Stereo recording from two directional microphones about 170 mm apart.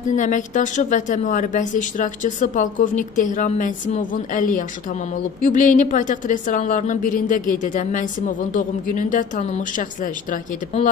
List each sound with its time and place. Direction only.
0.1 s a woman's voice: 45° left (ahead or behind)